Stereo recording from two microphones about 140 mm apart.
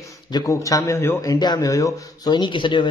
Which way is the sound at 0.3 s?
25° left (ahead or behind).